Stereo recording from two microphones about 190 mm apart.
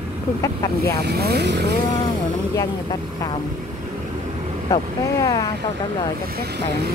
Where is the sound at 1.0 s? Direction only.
60° right (ahead or behind).